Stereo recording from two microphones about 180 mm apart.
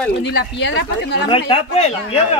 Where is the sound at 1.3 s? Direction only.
30° left (ahead or behind).